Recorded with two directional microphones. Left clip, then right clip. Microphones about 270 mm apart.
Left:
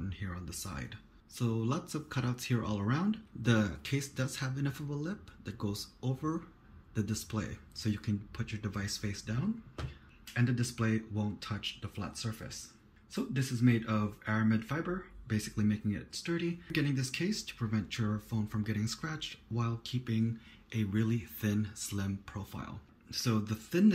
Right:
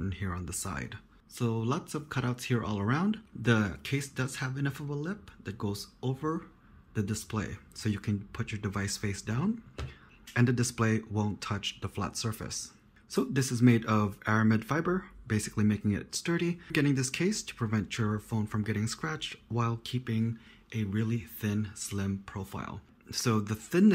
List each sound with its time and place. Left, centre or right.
0.1 s speech: centre